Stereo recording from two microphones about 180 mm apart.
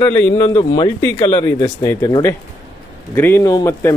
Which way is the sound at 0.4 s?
25° left (ahead or behind).